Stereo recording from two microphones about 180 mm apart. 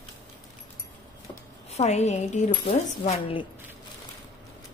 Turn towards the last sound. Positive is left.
turn(degrees=30)  # may be behind; listen again after turning